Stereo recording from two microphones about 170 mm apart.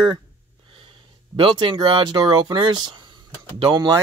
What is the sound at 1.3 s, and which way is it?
Speech, 30° right (ahead or behind).